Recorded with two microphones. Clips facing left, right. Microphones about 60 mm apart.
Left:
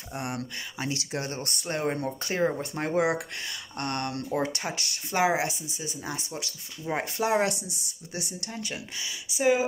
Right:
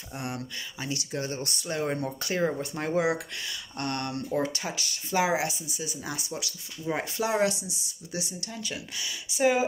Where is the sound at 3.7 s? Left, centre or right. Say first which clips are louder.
Left 1 dB; left.